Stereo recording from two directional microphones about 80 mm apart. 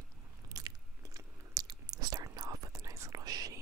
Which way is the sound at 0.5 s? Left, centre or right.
Right.